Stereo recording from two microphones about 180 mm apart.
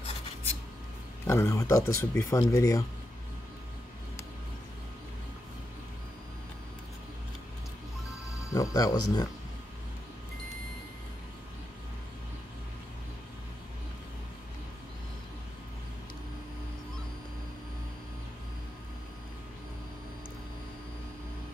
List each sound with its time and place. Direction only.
1.2 s speech: 15° left (ahead or behind)
8.4 s speech: 15° left (ahead or behind)